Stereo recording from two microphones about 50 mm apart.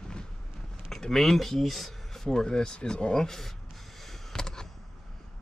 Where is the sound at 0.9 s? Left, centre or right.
Centre.